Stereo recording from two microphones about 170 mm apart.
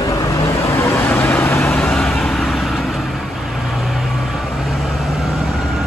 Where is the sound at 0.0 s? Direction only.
20° left (ahead or behind).